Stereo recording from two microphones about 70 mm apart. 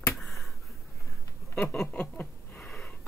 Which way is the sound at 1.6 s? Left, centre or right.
Centre.